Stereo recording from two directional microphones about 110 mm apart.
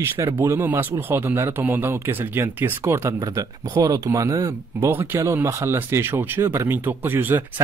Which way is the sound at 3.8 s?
35° right (ahead or behind).